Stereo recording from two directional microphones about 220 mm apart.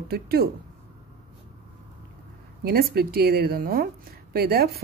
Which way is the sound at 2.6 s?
45° right (ahead or behind).